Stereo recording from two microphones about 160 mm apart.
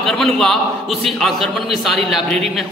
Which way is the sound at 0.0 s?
Centre (ahead or behind).